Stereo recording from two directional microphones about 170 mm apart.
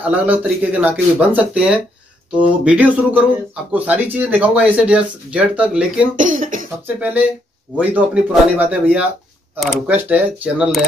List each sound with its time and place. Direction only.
0.0 s speech: 10° right (ahead or behind)
6.1 s speech: 50° right (ahead or behind)
7.7 s speech: 10° right (ahead or behind)